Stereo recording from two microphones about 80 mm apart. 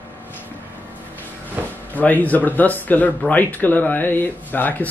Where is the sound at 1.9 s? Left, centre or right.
Left.